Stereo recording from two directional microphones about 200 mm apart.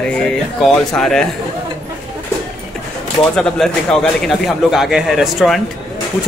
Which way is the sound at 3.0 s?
5° left (ahead or behind).